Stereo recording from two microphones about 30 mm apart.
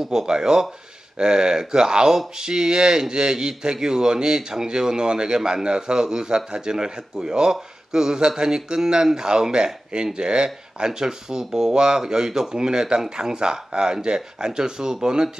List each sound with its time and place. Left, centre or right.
0.0 s speech: centre